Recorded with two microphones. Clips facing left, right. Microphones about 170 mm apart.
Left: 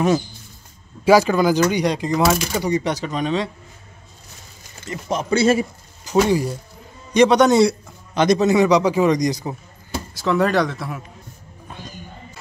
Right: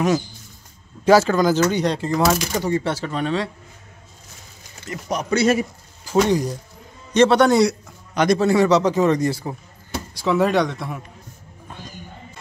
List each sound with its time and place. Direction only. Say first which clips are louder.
1.0 s a man's voice: left 1 dB; 10° left (ahead or behind)
2.2 s speech: even; centre (ahead or behind)
2.6 s a man's voice: left 1 dB; 15° left (ahead or behind)
4.8 s speech: left 2 dB; 25° left (ahead or behind)
6.1 s a man's voice: left 1 dB; 10° left (ahead or behind)
10.1 s speech: even; centre (ahead or behind)